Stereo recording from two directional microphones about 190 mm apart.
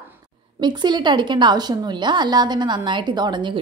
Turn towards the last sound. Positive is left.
turn(degrees=-25)  # may be behind; listen again after turning